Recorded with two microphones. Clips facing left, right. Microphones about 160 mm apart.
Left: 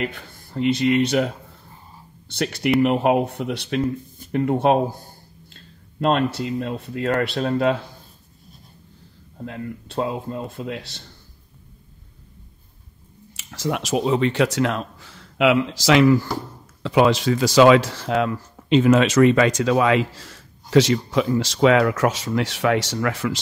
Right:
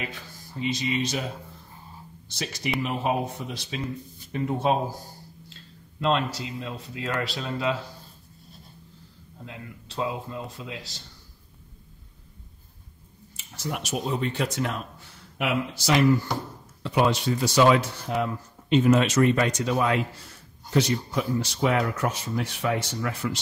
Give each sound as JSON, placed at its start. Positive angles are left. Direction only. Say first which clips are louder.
{"t": 0.0, "sound": "speech", "louder": "left 8 dB", "side_deg": 60}
{"t": 5.5, "sound": "a sound", "louder": "even", "side_deg": 50}
{"t": 6.4, "sound": "speech", "louder": "left 9 dB", "side_deg": 55}
{"t": 9.4, "sound": "a man's voice", "louder": "left 10 dB", "side_deg": 55}
{"t": 13.4, "sound": "speech", "louder": "left 7 dB", "side_deg": 90}